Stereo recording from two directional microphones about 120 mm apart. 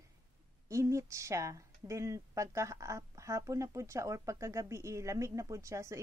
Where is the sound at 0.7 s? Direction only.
25° right (ahead or behind).